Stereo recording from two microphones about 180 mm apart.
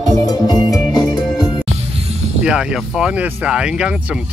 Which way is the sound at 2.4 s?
5° right (ahead or behind).